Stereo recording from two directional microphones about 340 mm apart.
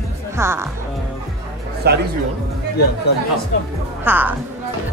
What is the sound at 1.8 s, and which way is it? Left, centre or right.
Speech, right.